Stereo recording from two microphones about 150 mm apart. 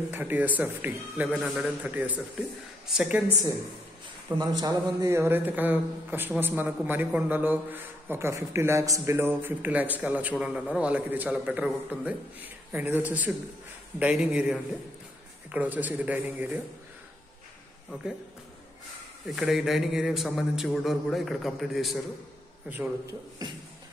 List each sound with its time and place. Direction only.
0.1 s a man's voice: 10° right (ahead or behind)
4.4 s a man's voice: 25° right (ahead or behind)
19.2 s a man's voice: centre (ahead or behind)